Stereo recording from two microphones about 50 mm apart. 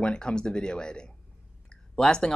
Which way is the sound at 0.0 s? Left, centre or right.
Centre.